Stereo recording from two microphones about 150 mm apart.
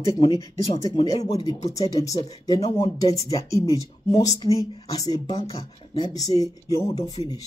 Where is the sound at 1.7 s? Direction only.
20° left (ahead or behind).